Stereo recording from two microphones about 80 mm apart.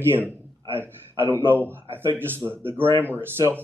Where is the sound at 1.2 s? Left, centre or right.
Right.